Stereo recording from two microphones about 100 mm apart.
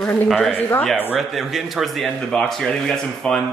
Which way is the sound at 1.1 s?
Centre (ahead or behind).